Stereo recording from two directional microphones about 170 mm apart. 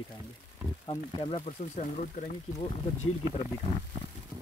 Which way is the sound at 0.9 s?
35° left (ahead or behind).